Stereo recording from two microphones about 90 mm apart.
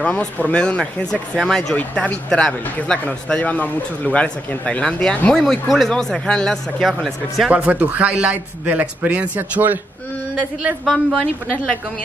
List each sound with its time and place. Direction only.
0.0 s speech: 15° left (ahead or behind)
5.4 s speech: centre (ahead or behind)
7.5 s a man's voice: 15° right (ahead or behind)
10.9 s speech: 5° right (ahead or behind)